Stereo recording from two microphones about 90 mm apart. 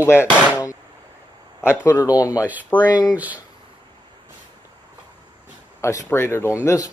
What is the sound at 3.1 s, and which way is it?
Speech, 15° right (ahead or behind).